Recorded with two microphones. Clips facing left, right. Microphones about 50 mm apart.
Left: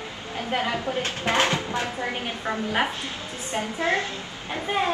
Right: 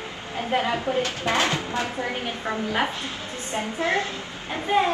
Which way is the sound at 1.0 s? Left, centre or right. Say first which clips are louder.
Left 3 dB; left.